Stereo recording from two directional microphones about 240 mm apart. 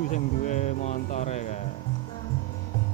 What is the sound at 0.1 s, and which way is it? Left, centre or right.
Speech, left.